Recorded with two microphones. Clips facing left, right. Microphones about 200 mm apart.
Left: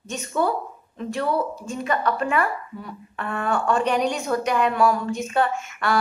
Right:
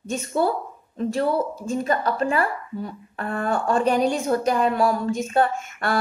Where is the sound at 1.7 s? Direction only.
40° right (ahead or behind).